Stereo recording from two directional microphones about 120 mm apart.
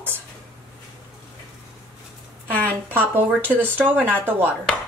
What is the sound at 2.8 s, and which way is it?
Speech, 15° right (ahead or behind).